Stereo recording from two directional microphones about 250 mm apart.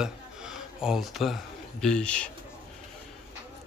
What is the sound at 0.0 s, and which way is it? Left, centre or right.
Speech, centre.